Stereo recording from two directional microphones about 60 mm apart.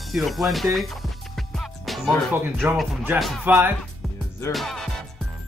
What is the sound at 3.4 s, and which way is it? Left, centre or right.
Speech, right.